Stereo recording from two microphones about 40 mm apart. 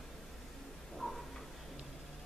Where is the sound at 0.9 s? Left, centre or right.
Centre.